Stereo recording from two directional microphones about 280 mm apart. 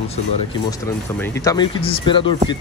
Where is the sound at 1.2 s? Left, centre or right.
Centre.